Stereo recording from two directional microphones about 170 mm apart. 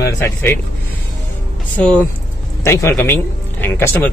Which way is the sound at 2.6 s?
15° left (ahead or behind).